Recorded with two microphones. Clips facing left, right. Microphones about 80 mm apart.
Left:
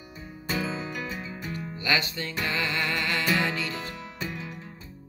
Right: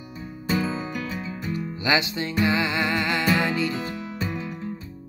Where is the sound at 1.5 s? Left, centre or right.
Centre.